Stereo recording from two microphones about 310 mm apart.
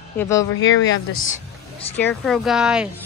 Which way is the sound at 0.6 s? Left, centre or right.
Left.